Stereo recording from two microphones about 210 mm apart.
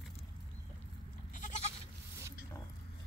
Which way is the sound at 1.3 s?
35° left (ahead or behind).